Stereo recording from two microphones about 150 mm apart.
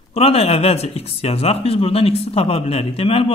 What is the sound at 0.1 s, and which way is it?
A man's voice, 40° left (ahead or behind).